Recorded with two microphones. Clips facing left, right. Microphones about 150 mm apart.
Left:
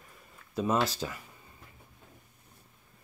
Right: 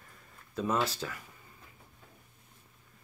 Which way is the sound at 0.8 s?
20° left (ahead or behind).